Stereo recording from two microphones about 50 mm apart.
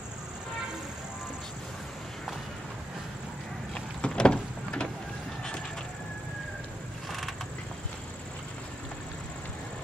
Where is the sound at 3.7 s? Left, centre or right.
Centre.